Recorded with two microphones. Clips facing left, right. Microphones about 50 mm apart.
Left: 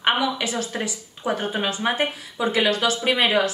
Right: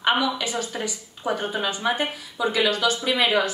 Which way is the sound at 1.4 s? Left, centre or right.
Left.